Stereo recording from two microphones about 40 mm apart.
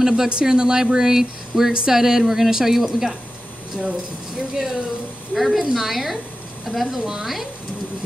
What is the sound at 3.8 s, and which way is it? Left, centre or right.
Speech, left.